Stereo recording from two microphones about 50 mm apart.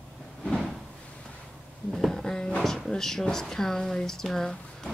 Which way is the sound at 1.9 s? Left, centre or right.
Centre.